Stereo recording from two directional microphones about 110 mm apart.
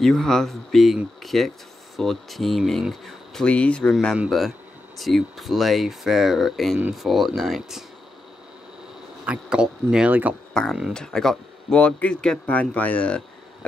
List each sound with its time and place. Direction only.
0.0 s speech: 5° left (ahead or behind)
3.4 s speech: 10° left (ahead or behind)
4.3 s speech: centre (ahead or behind)
9.2 s speech: 10° right (ahead or behind)
10.5 s speech: 5° left (ahead or behind)